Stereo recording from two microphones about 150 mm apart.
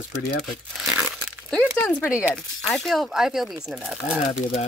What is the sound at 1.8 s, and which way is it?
Speech, 10° left (ahead or behind).